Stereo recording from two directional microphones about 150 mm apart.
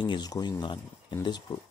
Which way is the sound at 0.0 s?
30° left (ahead or behind).